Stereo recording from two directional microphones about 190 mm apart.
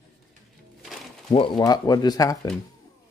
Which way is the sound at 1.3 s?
25° left (ahead or behind).